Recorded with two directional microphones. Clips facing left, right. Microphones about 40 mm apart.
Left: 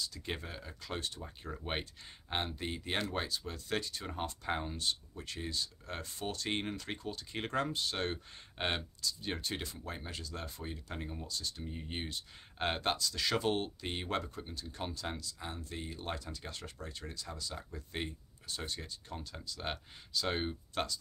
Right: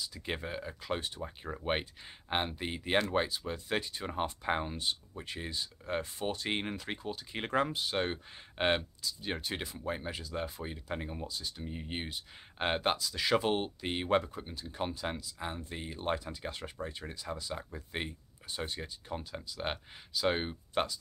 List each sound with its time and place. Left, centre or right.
0.0 s speech: centre